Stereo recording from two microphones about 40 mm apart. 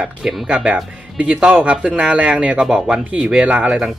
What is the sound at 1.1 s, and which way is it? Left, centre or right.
A man's voice, right.